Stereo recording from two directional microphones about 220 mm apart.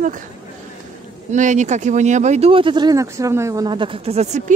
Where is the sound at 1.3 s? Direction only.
35° right (ahead or behind).